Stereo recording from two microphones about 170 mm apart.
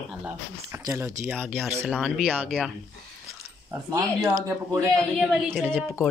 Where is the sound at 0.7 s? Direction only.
15° right (ahead or behind).